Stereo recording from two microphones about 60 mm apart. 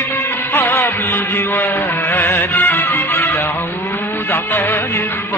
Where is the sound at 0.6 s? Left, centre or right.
Left.